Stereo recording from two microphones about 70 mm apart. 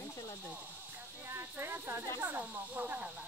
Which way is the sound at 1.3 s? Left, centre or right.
Right.